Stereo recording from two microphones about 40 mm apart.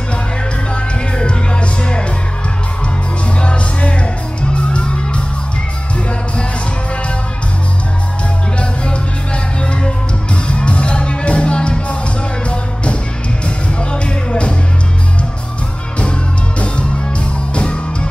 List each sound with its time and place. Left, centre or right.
1.1 s music: left
3.3 s music: left
8.5 s music: left
13.7 s music: left
16.0 s music: left